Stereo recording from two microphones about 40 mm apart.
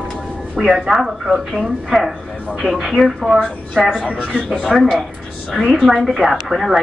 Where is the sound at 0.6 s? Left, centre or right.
Centre.